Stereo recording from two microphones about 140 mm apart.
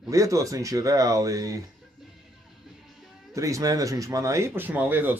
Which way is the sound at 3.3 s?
20° right (ahead or behind).